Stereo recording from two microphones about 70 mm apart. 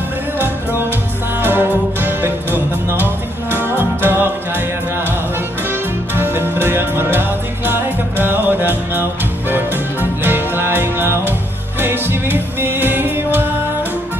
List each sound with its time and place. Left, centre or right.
1.4 s music: right
3.6 s music: right
5.7 s music: right